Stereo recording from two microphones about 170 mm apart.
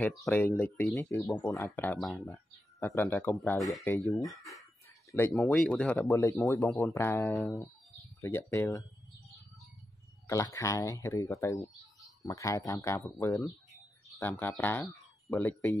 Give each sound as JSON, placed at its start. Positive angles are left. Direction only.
{"t": 0.0, "sound": "speech", "side_deg": 5}
{"t": 2.0, "sound": "speech", "side_deg": 0}
{"t": 2.8, "sound": "speech", "side_deg": 15}
{"t": 4.3, "sound": "speech", "side_deg": 0}
{"t": 5.1, "sound": "speech", "side_deg": 10}
{"t": 10.2, "sound": "speech", "side_deg": 20}